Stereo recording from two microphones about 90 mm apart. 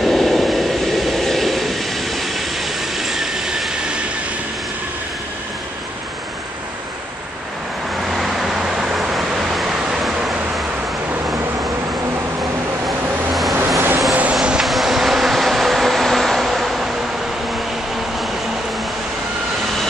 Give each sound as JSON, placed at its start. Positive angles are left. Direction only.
{"t": 0.0, "sound": "train", "side_deg": 0}
{"t": 8.1, "sound": "vehicle", "side_deg": -5}
{"t": 11.1, "sound": "a sound", "side_deg": -30}
{"t": 12.8, "sound": "vehicle", "side_deg": 0}
{"t": 13.7, "sound": "vehicle", "side_deg": -30}
{"t": 14.3, "sound": "train", "side_deg": -5}